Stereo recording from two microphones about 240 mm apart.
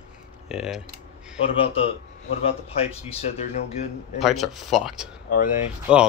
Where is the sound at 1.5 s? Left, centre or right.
Left.